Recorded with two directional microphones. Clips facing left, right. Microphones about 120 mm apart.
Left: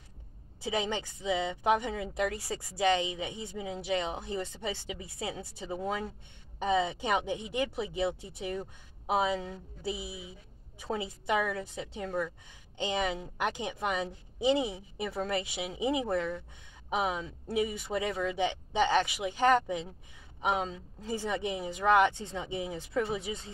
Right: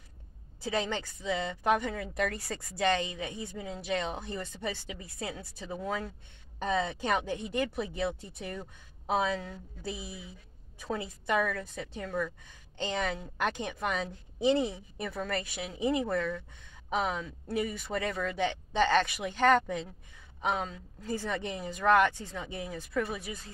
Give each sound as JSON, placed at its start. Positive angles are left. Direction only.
{"t": 0.6, "sound": "speech", "side_deg": 15}